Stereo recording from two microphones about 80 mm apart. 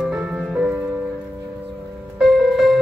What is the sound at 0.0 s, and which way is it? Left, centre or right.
Music, centre.